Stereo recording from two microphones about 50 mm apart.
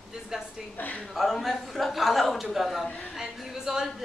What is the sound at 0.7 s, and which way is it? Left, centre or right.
Speech, left.